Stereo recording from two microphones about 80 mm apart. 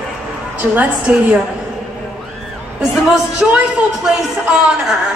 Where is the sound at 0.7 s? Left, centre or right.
Centre.